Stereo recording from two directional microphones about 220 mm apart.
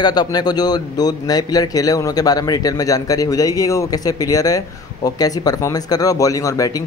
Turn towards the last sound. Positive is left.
turn(degrees=15)  # may be behind; listen again after turning